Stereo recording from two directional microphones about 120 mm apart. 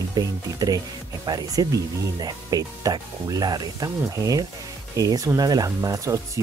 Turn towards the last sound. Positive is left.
turn(degrees=-30)  # may be behind; listen again after turning